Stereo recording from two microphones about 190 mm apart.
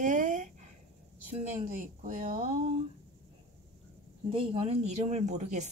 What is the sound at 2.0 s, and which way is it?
Speech, 45° right (ahead or behind).